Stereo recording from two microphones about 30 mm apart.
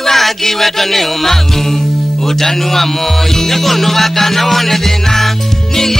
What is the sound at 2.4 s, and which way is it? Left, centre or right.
Music, centre.